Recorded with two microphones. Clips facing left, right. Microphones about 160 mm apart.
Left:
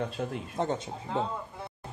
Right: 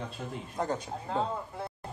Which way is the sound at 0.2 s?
50° left (ahead or behind).